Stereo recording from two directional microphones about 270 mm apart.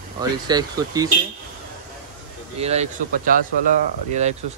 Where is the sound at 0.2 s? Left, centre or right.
Centre.